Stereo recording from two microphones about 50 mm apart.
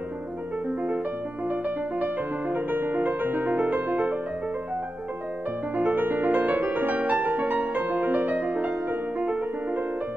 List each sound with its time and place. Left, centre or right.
2.5 s music: right
5.8 s music: right